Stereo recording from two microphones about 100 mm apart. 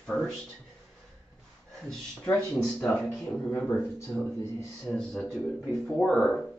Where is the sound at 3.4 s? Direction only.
20° left (ahead or behind).